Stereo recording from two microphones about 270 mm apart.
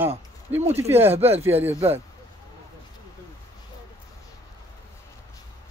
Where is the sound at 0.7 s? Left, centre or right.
Centre.